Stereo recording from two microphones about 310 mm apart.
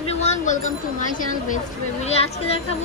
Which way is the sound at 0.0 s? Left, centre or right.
Left.